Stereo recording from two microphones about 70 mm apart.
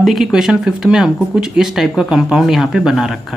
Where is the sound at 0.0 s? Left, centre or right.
Centre.